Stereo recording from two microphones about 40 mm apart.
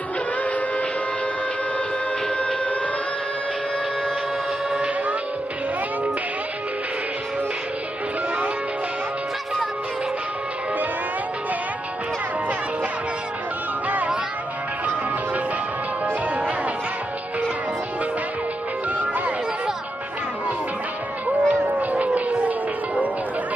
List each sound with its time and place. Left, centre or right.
13.8 s a sound: right
21.3 s music: right
21.6 s howl: right